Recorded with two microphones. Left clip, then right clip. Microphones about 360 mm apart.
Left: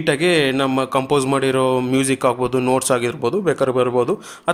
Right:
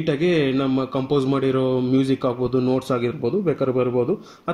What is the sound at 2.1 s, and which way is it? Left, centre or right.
Speech, left.